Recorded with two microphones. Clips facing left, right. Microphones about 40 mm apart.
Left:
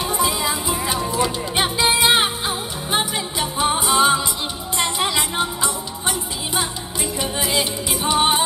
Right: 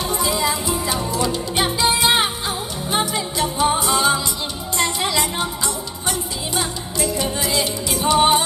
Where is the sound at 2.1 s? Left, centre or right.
Centre.